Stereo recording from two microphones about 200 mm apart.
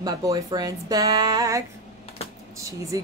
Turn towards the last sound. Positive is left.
turn(degrees=-15)  # may be behind; listen again after turning